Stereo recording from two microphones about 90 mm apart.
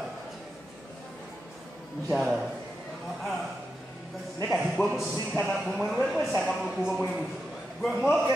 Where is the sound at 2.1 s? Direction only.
Centre (ahead or behind).